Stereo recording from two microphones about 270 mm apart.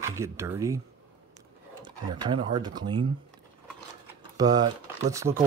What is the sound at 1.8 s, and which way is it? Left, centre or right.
Speech, centre.